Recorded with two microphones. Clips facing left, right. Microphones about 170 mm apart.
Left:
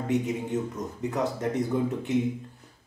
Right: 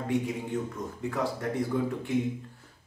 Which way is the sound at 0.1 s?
20° left (ahead or behind).